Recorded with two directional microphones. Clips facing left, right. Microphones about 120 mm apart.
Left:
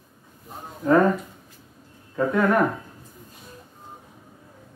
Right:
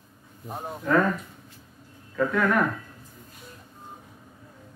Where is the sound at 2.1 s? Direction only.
25° left (ahead or behind).